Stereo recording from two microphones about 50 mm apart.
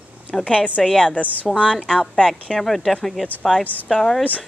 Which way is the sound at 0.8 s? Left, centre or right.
Centre.